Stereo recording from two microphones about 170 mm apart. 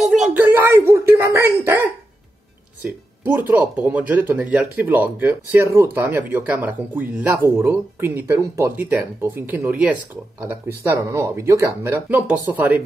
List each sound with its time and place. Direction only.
0.0 s a sound: centre (ahead or behind)
0.3 s speech: 15° right (ahead or behind)
3.3 s speech: 10° right (ahead or behind)